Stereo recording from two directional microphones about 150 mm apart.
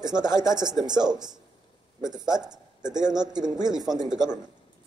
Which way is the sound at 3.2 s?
25° right (ahead or behind).